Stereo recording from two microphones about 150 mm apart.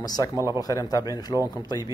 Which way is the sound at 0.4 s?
20° right (ahead or behind).